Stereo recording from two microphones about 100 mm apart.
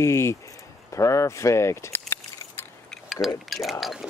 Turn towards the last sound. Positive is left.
turn(degrees=0)  # may be behind; listen again after turning